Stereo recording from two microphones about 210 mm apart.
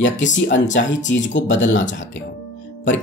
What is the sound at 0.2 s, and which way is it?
Speech, 60° left (ahead or behind).